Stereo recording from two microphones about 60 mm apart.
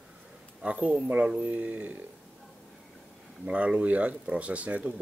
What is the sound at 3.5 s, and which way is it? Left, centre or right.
Speech, right.